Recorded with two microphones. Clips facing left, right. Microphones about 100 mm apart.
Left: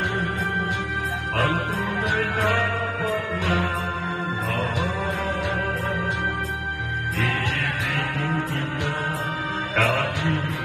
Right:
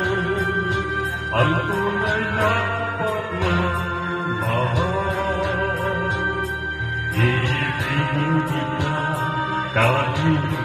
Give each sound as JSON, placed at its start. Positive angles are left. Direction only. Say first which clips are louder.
{"t": 1.3, "sound": "speech", "louder": "right 4 dB", "side_deg": -45}
{"t": 9.8, "sound": "music", "louder": "right 3 dB", "side_deg": -40}